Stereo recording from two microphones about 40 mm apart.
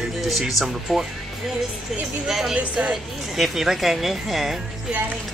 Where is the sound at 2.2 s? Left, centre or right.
Centre.